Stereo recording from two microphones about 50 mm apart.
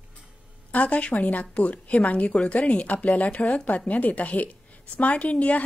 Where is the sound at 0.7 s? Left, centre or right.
Left.